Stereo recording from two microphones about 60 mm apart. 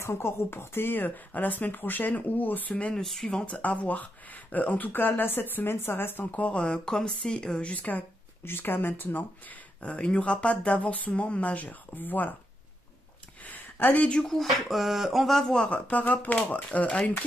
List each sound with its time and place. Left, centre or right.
0.0 s speech: left
2.9 s speech: centre
3.3 s speech: left
6.3 s speech: left
8.5 s speech: left
9.8 s speech: centre
13.5 s a sound: left
14.0 s speech: centre
14.3 s speech: centre
15.9 s speech: left